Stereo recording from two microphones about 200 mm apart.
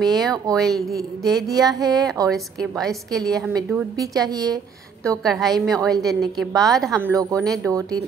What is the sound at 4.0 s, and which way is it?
Speech, 20° right (ahead or behind).